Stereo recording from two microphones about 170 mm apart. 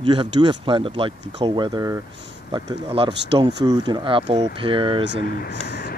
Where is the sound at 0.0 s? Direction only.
30° right (ahead or behind).